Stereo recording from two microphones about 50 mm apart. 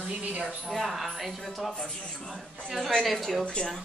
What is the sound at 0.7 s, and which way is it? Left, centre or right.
A man's voice, centre.